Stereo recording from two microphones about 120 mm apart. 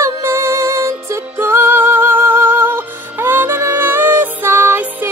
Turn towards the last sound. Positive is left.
turn(degrees=-20)  # may be behind; listen again after turning